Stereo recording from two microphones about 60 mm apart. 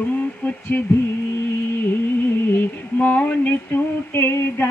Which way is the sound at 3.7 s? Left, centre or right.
Left.